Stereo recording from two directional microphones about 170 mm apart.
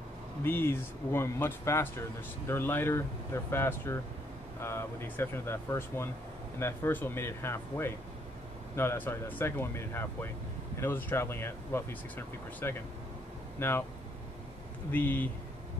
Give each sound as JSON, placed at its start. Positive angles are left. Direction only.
{"t": 0.4, "sound": "speech", "side_deg": 15}
{"t": 14.9, "sound": "speech", "side_deg": 10}